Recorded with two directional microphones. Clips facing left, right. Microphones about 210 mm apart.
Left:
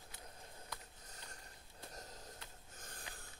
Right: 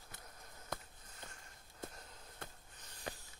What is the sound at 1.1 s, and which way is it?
Sniff, 40° left (ahead or behind).